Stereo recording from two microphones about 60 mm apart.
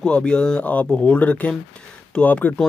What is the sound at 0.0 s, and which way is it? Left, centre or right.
Speech, centre.